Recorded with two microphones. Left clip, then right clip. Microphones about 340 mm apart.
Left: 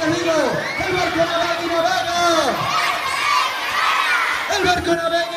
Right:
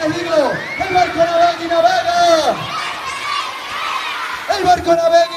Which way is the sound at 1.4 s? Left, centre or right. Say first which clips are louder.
Right 6 dB; right.